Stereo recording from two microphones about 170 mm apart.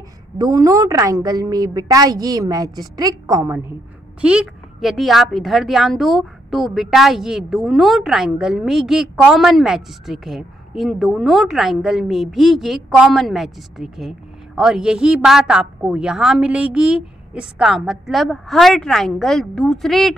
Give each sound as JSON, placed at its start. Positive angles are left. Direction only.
{"t": 0.4, "sound": "a woman's voice", "side_deg": -20}
{"t": 4.2, "sound": "speech", "side_deg": -5}